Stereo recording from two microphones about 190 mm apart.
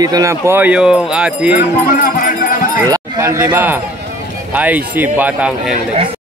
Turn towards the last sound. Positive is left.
turn(degrees=-10)  # may be behind; listen again after turning